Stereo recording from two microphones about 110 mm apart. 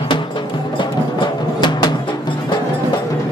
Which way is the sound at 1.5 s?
45° left (ahead or behind).